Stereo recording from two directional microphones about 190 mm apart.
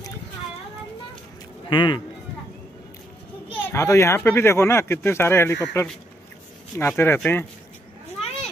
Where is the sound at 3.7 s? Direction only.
15° left (ahead or behind).